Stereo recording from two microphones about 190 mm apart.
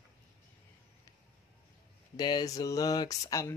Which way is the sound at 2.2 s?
20° left (ahead or behind).